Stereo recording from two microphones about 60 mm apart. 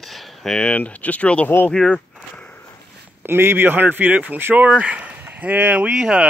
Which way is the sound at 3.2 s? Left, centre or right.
Right.